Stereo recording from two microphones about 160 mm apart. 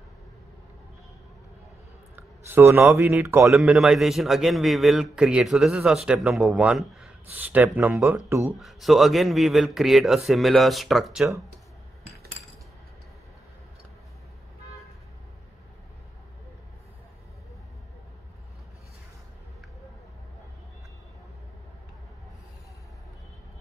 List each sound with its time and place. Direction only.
2.1 s speech: 15° right (ahead or behind)
3.5 s a man's voice: 5° right (ahead or behind)
8.5 s a man's voice: centre (ahead or behind)